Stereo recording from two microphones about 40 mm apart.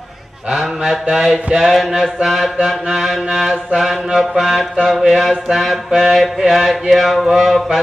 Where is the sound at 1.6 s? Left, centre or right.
Centre.